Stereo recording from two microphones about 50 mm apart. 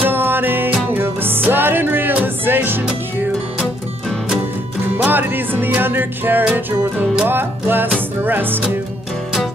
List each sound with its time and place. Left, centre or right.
0.0 s music: right
4.8 s music: right